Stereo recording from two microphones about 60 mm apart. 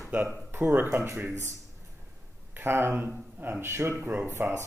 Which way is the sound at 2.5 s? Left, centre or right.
Right.